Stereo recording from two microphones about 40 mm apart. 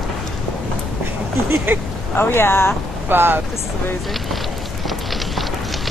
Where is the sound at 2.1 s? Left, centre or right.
Left.